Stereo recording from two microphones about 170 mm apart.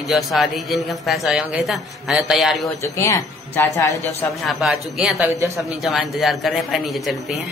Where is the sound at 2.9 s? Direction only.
15° left (ahead or behind).